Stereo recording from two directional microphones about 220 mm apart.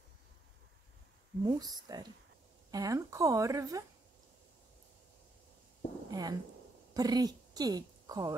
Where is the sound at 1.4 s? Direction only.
20° right (ahead or behind).